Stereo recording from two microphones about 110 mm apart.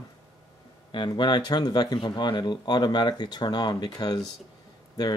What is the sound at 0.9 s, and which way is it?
Speech, 45° left (ahead or behind).